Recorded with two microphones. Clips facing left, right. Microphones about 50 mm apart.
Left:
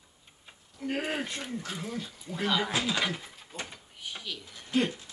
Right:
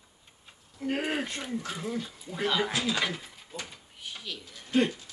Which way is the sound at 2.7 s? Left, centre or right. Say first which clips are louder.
Even; centre.